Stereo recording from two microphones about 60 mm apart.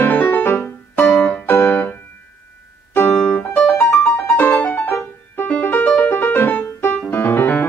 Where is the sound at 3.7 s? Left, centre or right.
Left.